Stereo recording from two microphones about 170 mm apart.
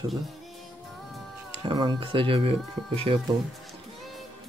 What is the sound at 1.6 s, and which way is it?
Speech, 30° right (ahead or behind).